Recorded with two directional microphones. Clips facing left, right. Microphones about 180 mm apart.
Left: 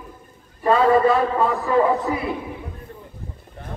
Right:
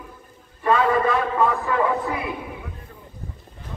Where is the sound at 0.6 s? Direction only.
35° left (ahead or behind).